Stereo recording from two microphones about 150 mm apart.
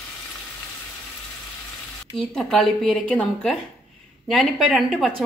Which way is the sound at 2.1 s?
5° left (ahead or behind).